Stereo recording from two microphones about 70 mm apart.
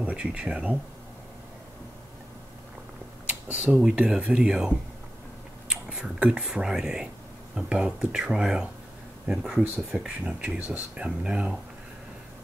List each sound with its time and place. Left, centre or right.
0.0 s speech: centre
3.3 s speech: centre
9.8 s speech: centre